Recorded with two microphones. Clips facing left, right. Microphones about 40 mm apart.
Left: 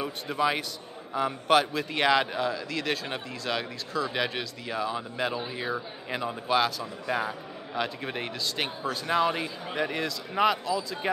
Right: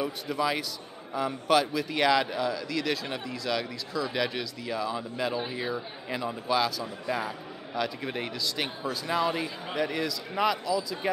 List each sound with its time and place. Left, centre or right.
0.0 s a man's voice: left